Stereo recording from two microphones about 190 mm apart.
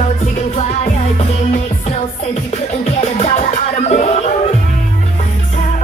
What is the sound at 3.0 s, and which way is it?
Music, 35° left (ahead or behind).